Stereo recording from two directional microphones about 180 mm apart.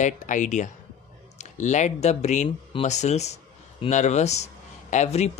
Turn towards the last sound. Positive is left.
turn(degrees=40)  # may be behind; listen again after turning